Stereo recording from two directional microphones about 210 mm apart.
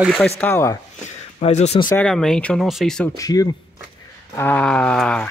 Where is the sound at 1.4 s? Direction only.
30° left (ahead or behind).